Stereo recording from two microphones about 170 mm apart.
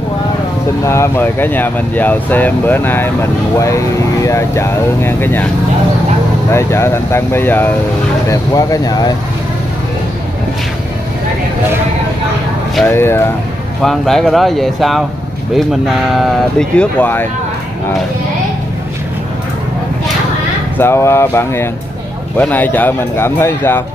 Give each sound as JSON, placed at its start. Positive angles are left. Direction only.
{"t": 0.8, "sound": "speech", "side_deg": 15}
{"t": 6.5, "sound": "speech", "side_deg": 15}
{"t": 12.8, "sound": "speech", "side_deg": 15}
{"t": 13.8, "sound": "speech", "side_deg": 0}
{"t": 16.5, "sound": "speech", "side_deg": 10}
{"t": 20.7, "sound": "speech", "side_deg": 15}